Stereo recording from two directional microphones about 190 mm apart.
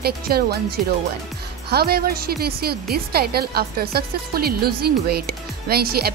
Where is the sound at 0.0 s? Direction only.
55° right (ahead or behind).